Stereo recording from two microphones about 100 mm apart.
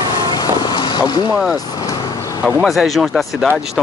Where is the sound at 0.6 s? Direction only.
45° left (ahead or behind).